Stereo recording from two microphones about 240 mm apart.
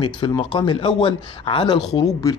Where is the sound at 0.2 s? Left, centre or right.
Centre.